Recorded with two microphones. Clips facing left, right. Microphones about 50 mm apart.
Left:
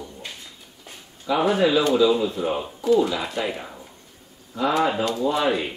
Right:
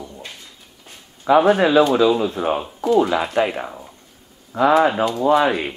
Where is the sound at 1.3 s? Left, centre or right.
Right.